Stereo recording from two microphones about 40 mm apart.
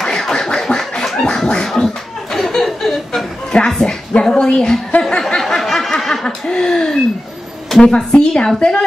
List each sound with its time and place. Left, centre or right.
0.0 s scratching: centre
1.0 s a sound: centre
2.3 s chuckle: centre
3.5 s speech: left
4.1 s a sound: centre
5.0 s snicker: centre
7.8 s speech: centre